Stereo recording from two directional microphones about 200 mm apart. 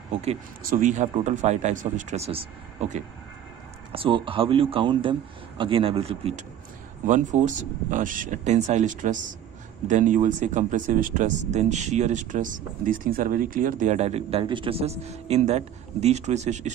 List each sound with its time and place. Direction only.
0.7 s speech: 40° right (ahead or behind)